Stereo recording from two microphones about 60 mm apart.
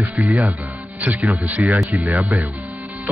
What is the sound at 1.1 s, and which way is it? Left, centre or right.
Speech, right.